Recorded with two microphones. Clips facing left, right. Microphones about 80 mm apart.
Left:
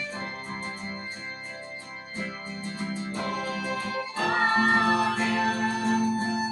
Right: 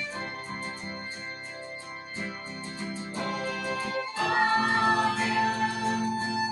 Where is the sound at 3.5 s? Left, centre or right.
Centre.